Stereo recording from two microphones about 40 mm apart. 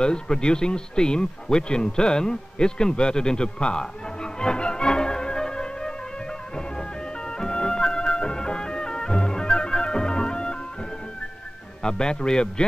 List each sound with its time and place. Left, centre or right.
0.0 s speech: left
7.2 s music: centre
11.8 s a man's voice: centre